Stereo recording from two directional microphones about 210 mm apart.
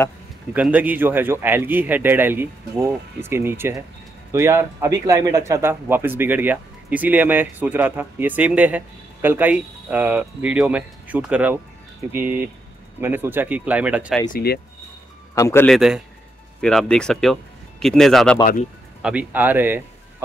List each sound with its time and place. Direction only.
0.5 s speech: 5° right (ahead or behind)
14.3 s speech: 50° left (ahead or behind)
15.3 s a man's voice: 10° left (ahead or behind)
18.4 s speech: 35° left (ahead or behind)
19.0 s speech: 5° right (ahead or behind)